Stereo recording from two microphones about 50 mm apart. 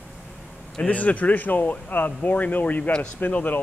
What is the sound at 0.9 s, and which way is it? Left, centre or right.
Speech, left.